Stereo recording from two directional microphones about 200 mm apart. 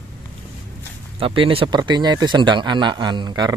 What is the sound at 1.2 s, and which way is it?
A man's voice, 25° right (ahead or behind).